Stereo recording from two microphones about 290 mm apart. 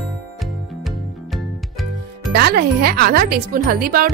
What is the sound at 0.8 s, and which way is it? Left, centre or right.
Music, centre.